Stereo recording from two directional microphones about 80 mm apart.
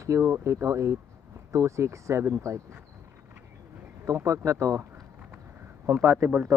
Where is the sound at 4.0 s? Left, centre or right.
Right.